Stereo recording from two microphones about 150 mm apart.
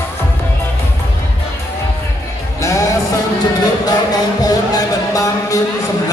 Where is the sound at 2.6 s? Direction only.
20° left (ahead or behind).